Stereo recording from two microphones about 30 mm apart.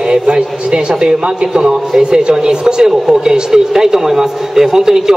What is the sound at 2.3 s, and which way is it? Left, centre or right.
A woman's voice, right.